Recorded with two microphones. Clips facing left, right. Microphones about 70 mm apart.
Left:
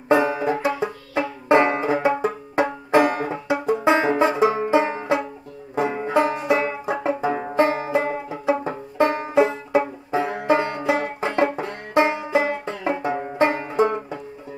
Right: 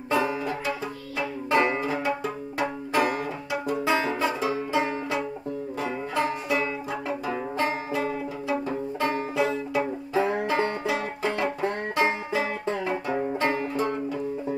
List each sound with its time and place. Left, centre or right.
0.1 s banjo: left